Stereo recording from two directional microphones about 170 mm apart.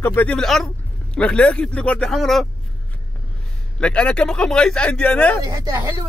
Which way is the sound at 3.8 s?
5° left (ahead or behind).